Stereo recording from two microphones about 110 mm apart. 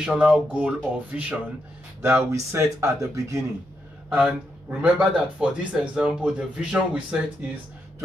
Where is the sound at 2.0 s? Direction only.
25° right (ahead or behind).